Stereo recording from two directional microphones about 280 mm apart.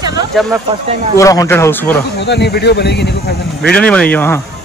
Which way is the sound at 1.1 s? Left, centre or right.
Centre.